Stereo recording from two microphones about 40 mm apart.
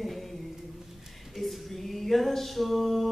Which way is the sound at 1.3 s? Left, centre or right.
Centre.